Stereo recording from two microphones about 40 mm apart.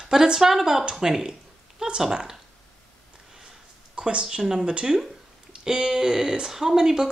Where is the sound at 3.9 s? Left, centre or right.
Right.